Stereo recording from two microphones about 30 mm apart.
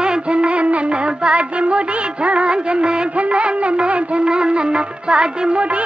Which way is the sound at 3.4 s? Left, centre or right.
Right.